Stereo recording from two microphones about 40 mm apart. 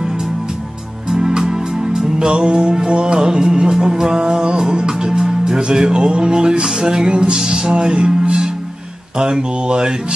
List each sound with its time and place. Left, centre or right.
1.1 s music: centre